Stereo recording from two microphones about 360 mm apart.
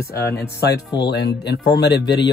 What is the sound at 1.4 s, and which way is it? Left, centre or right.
Speech, left.